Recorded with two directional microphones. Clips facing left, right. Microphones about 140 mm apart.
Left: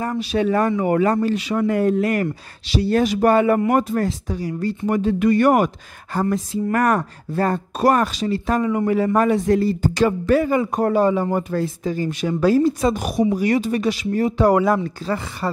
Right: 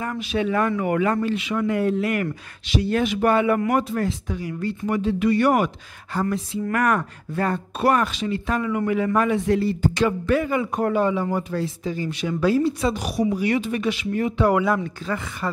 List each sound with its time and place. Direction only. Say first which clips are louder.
0.2 s speech: left 3 dB; 40° left (ahead or behind)